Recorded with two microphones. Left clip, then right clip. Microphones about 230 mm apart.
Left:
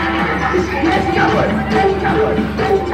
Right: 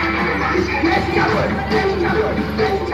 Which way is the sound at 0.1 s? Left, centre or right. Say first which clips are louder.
Left 2 dB; left.